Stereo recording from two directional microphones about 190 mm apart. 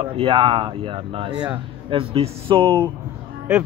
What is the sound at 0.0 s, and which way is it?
Speech, 25° right (ahead or behind).